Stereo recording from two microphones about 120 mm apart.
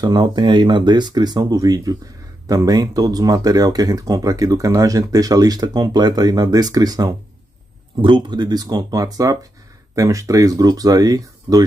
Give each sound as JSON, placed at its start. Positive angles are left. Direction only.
{"t": 0.0, "sound": "speech", "side_deg": -35}